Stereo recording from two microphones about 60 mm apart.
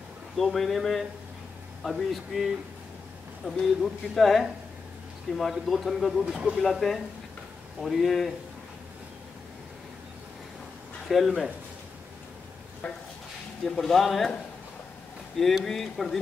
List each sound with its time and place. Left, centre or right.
0.4 s speech: centre
3.4 s speech: centre
6.2 s speech: centre
6.6 s speech: centre
11.1 s speech: centre
12.8 s a sound: left
13.7 s speech: centre
15.3 s speech: centre